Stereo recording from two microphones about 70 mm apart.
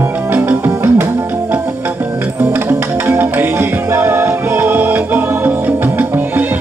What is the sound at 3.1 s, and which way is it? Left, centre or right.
Music, right.